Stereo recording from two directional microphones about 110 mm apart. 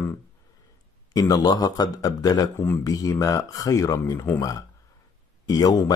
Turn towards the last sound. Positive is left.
turn(degrees=35)  # may be behind; listen again after turning